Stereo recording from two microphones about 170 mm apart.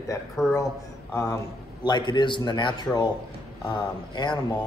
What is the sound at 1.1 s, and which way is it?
Speech, 15° left (ahead or behind).